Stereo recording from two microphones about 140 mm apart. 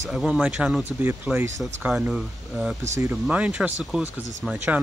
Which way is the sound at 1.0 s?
15° right (ahead or behind).